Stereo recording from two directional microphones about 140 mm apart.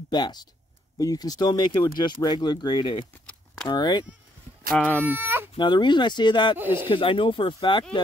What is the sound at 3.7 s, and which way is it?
Speech, 30° left (ahead or behind).